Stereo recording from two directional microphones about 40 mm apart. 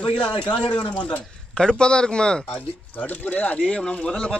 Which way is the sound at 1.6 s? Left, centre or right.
Left.